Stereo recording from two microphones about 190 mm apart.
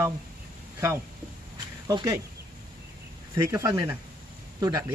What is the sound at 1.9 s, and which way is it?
Speech, 20° right (ahead or behind).